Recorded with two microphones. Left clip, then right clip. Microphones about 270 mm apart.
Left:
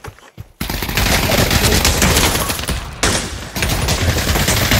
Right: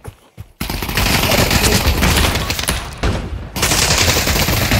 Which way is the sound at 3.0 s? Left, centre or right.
Left.